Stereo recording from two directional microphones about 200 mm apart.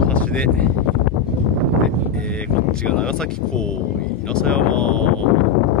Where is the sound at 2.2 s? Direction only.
5° left (ahead or behind).